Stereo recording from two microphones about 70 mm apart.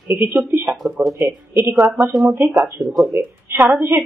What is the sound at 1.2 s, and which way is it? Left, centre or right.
Speech, right.